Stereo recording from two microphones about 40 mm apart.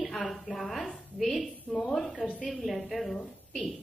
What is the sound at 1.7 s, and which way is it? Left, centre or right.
Speech, centre.